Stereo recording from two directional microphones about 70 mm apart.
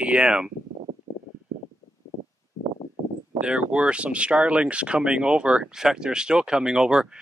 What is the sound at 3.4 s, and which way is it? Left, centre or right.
Speech, centre.